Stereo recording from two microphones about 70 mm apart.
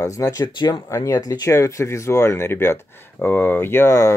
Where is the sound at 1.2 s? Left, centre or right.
Left.